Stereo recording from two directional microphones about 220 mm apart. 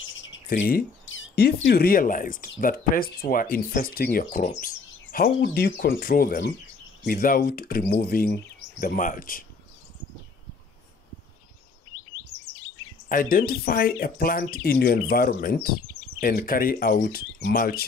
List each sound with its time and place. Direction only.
0.5 s speech: 40° left (ahead or behind)
1.0 s speech: 55° left (ahead or behind)
13.1 s speech: 40° left (ahead or behind)